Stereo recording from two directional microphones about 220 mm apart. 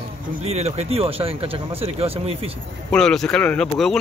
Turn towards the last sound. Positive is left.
turn(degrees=5)  # may be behind; listen again after turning